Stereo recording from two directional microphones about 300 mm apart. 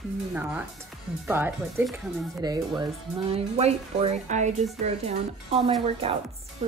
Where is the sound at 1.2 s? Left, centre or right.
Centre.